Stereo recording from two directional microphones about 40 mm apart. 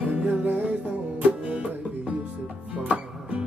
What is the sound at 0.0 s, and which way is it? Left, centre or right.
Music, right.